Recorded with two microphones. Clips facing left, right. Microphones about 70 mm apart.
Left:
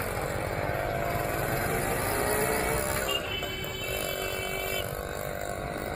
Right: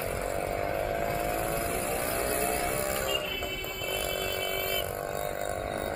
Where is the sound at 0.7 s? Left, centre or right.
Left.